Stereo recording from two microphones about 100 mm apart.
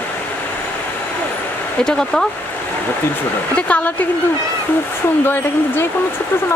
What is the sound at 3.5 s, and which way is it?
Speech, 15° left (ahead or behind).